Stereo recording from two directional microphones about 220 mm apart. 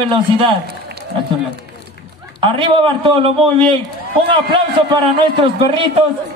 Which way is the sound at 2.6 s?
25° right (ahead or behind).